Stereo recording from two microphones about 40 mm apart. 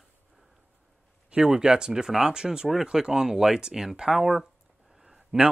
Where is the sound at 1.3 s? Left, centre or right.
Centre.